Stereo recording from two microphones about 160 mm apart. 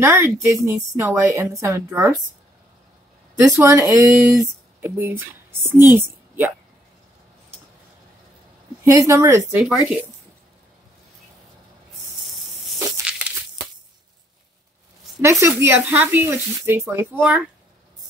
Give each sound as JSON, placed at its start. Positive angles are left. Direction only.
{"t": 0.0, "sound": "a woman's voice", "side_deg": -15}
{"t": 3.3, "sound": "speech", "side_deg": -20}
{"t": 5.9, "sound": "a sound", "side_deg": -15}
{"t": 8.8, "sound": "speech", "side_deg": -20}
{"t": 9.6, "sound": "speech", "side_deg": -5}
{"t": 15.2, "sound": "a woman's voice", "side_deg": -15}